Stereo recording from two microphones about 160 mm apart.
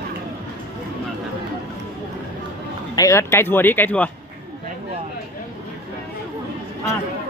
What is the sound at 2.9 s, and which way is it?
Speech, 20° left (ahead or behind).